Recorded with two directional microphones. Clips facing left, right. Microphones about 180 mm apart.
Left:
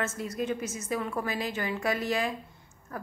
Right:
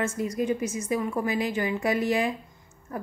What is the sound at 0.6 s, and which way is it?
Speech, centre (ahead or behind).